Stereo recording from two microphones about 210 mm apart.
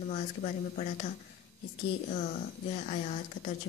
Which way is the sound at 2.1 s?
35° left (ahead or behind).